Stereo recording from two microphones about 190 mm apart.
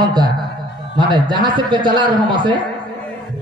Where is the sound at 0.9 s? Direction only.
25° right (ahead or behind).